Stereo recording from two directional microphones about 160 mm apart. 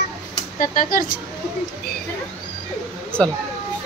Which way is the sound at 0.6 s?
60° left (ahead or behind).